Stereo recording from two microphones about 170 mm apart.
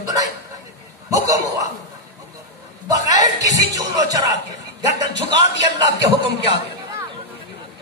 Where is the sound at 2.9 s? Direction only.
20° right (ahead or behind).